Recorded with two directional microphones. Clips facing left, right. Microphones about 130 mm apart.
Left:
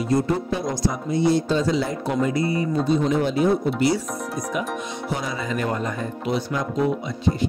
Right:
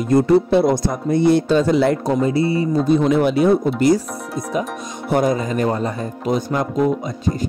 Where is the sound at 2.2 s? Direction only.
30° right (ahead or behind).